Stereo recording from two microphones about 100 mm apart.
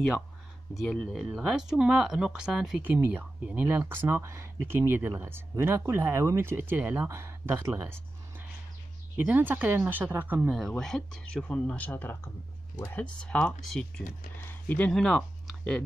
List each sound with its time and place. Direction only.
0.7 s speech: centre (ahead or behind)
2.8 s speech: 20° right (ahead or behind)
9.1 s speech: 20° right (ahead or behind)
10.8 s speech: 5° left (ahead or behind)
12.9 s speech: 5° left (ahead or behind)
14.4 s a sound: 20° left (ahead or behind)
14.9 s speech: 5° left (ahead or behind)